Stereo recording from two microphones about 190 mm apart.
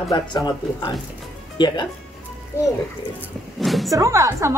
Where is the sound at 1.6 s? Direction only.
25° left (ahead or behind).